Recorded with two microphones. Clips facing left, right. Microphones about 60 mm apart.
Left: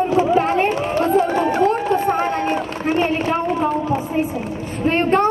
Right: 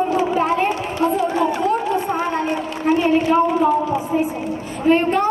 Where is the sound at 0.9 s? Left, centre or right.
Left.